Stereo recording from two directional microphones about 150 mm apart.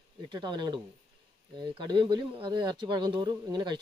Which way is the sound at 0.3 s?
30° right (ahead or behind).